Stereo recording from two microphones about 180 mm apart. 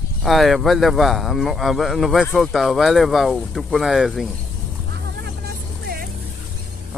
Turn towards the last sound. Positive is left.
turn(degrees=-60)  # may be behind; listen again after turning